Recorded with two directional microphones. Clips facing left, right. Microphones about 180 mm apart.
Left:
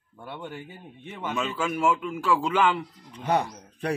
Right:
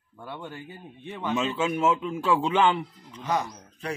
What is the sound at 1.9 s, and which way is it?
Speech, 25° right (ahead or behind).